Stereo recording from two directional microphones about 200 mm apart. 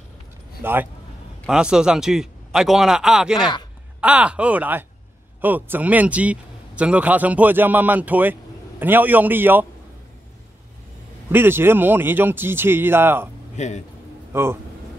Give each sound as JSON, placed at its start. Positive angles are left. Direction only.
{"t": 0.6, "sound": "a man's voice", "side_deg": -10}
{"t": 11.3, "sound": "speech", "side_deg": -10}
{"t": 13.6, "sound": "a man's voice", "side_deg": 35}
{"t": 14.3, "sound": "speech", "side_deg": -10}